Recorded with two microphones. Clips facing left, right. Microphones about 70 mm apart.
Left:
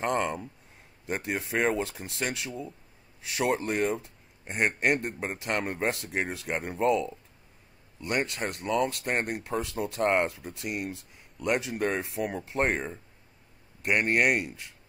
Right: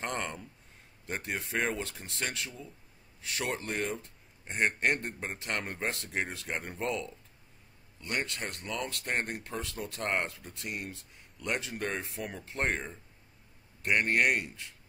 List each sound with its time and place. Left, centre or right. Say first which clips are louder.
0.0 s speech: left 8 dB; centre